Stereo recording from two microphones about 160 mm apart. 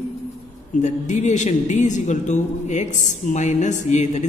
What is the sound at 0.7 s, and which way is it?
Speech, 45° left (ahead or behind).